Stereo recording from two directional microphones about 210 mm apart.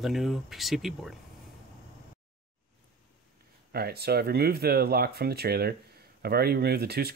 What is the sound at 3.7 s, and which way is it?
Speech, 50° right (ahead or behind).